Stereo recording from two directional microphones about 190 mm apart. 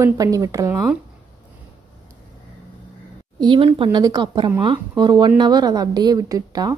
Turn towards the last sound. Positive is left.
turn(degrees=-20)  # may be behind; listen again after turning